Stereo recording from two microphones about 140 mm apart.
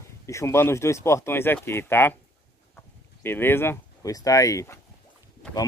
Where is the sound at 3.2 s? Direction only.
15° left (ahead or behind).